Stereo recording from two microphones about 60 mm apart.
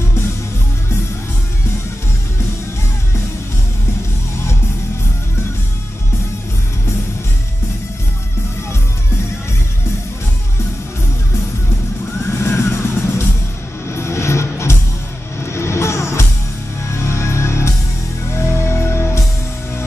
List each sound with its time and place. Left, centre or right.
12.3 s music: left